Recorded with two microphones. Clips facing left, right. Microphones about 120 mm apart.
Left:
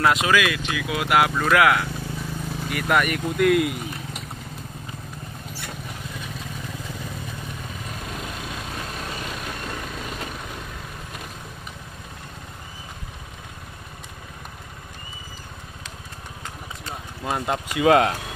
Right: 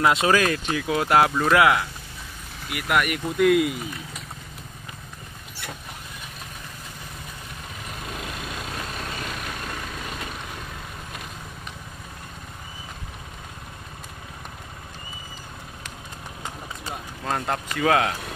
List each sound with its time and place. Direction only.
0.0 s speech: 30° right (ahead or behind)
1.4 s speech: 25° right (ahead or behind)
2.7 s speech: 5° right (ahead or behind)
17.2 s speech: 15° left (ahead or behind)